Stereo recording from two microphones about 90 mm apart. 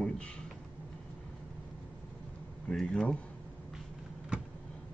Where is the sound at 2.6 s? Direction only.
10° left (ahead or behind).